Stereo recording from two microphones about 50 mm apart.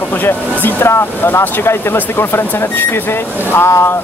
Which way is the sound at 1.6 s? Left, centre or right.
Left.